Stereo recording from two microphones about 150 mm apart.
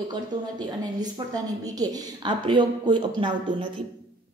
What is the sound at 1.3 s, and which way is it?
A woman's voice, 30° right (ahead or behind).